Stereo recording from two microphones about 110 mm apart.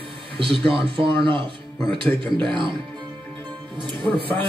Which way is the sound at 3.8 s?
50° right (ahead or behind).